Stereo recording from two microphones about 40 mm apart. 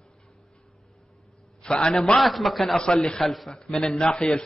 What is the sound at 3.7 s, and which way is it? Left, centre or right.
Speech, centre.